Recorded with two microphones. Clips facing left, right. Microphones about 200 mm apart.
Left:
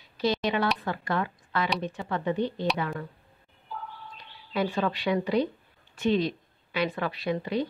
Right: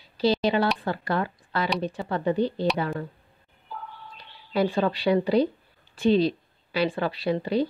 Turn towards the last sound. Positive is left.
turn(degrees=-30)  # may be behind; listen again after turning